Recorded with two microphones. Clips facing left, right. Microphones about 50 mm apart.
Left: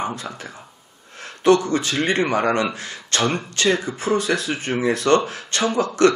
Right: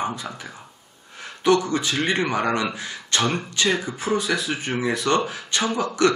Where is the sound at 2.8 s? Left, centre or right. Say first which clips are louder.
Left 1 dB; centre.